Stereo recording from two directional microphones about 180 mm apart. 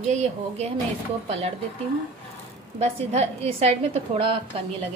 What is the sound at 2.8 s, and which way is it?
A woman's voice, 35° right (ahead or behind).